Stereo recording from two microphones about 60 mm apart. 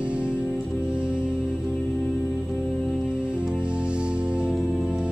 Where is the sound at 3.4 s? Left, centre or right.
Centre.